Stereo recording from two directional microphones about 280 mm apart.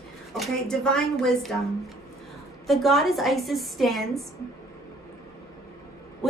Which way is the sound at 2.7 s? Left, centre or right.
Centre.